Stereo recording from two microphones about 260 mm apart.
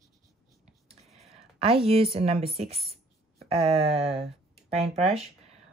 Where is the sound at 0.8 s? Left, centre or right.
Right.